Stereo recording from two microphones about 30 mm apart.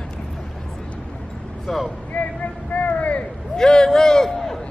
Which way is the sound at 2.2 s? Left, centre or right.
Left.